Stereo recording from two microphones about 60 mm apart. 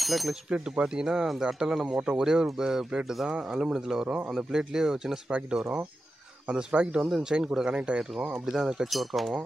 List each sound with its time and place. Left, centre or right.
0.0 s speech: centre
0.5 s speech: centre
6.4 s speech: centre
8.3 s speech: centre